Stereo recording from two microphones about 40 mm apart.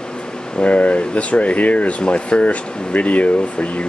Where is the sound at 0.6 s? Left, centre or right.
Left.